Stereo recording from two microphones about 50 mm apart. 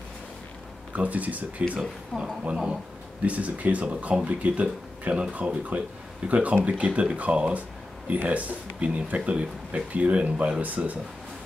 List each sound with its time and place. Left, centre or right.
0.9 s speech: right
1.8 s speech: centre
3.2 s speech: right